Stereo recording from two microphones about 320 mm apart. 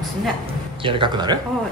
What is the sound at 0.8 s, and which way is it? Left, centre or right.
Speech, centre.